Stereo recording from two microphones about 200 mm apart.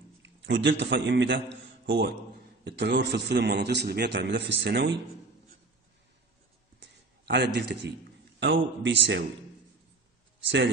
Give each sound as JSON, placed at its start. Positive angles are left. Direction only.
{"t": 0.2, "sound": "a man's voice", "side_deg": -65}
{"t": 6.8, "sound": "a sound", "side_deg": -60}
{"t": 8.4, "sound": "a man's voice", "side_deg": -65}
{"t": 10.4, "sound": "a man's voice", "side_deg": -60}